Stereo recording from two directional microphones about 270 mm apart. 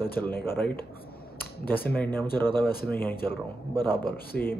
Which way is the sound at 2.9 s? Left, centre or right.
Centre.